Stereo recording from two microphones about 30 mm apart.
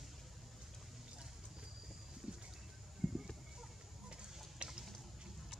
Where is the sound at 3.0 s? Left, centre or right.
Centre.